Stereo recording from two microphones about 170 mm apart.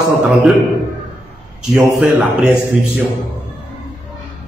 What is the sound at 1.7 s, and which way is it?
A man's voice, centre (ahead or behind).